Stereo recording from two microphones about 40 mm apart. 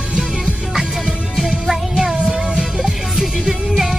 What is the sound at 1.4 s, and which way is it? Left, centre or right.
Music, centre.